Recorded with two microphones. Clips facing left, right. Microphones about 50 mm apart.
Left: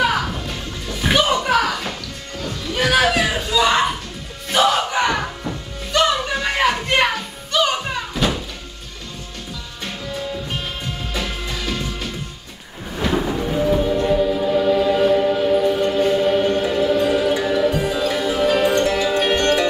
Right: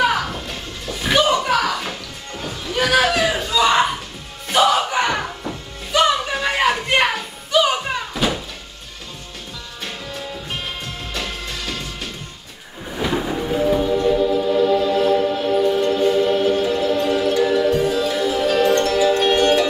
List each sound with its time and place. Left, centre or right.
0.0 s music: centre
1.0 s a sound: centre
2.3 s music: centre
2.7 s a sound: centre
4.5 s music: centre
9.8 s music: centre
12.9 s train: centre
14.0 s music: centre
19.3 s music: centre